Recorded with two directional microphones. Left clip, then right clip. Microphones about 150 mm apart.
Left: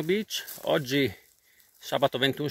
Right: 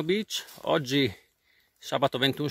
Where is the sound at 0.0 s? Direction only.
25° right (ahead or behind).